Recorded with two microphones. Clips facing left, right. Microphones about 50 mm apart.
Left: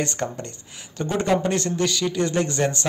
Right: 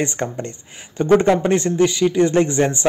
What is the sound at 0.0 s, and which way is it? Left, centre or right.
Speech, right.